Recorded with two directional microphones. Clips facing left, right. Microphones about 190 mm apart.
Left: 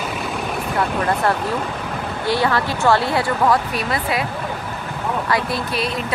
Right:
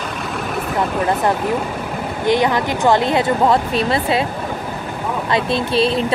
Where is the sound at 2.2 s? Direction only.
20° right (ahead or behind).